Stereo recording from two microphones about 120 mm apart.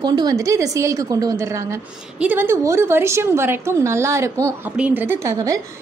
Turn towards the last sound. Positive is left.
turn(degrees=-25)  # may be behind; listen again after turning